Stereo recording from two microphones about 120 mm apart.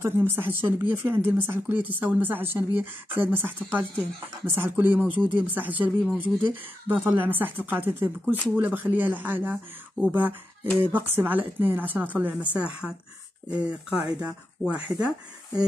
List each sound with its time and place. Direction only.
0.0 s speech: 20° right (ahead or behind)